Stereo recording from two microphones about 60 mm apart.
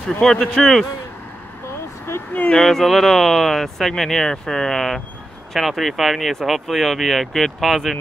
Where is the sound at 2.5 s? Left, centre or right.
Centre.